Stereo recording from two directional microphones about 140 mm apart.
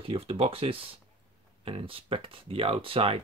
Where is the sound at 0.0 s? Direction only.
40° right (ahead or behind).